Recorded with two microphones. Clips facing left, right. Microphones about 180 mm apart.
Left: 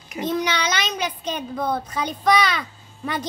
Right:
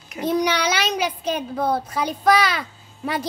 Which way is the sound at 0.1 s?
10° right (ahead or behind).